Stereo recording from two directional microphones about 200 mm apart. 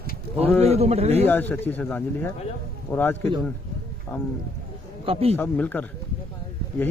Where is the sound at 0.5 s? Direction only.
35° right (ahead or behind).